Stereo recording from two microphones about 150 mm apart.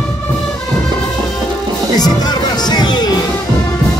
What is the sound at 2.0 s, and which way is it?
Music, 25° left (ahead or behind).